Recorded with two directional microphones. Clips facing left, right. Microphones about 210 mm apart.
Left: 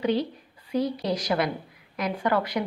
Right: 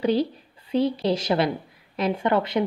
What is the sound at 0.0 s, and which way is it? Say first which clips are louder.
A woman's voice: right 3 dB; 30° right (ahead or behind).